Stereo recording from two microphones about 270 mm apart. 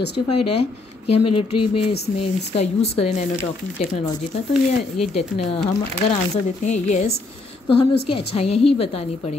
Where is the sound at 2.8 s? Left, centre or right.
Left.